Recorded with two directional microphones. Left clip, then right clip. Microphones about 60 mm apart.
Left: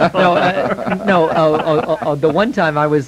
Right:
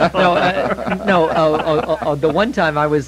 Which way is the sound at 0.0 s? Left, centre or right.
Right.